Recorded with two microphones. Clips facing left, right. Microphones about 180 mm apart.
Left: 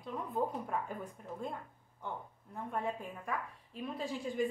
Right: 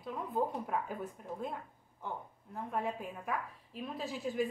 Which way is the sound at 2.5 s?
5° right (ahead or behind).